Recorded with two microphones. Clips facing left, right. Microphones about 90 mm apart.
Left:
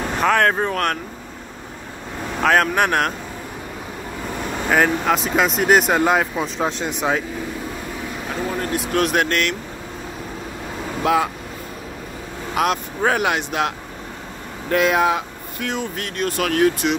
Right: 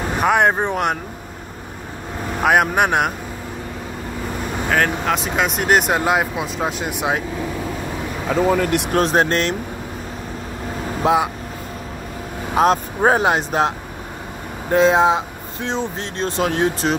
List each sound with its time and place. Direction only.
0.2 s speech: 15° right (ahead or behind)
2.4 s speech: 15° right (ahead or behind)
4.6 s speech: 5° left (ahead or behind); by 7.2 s 10° right (ahead or behind)
8.4 s speech: 85° right
8.9 s speech: 35° right (ahead or behind)
11.0 s speech: 30° right (ahead or behind)
12.5 s speech: 35° right (ahead or behind)